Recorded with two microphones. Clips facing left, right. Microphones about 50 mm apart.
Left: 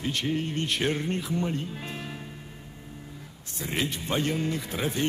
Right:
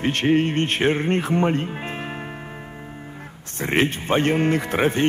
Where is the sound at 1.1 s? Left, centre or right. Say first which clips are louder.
Right 9 dB; right.